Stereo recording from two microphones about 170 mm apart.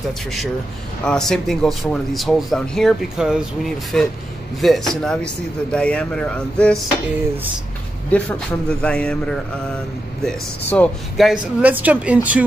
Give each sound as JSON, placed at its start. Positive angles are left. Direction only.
{"t": 1.0, "sound": "speech", "side_deg": 5}
{"t": 8.1, "sound": "speech", "side_deg": 5}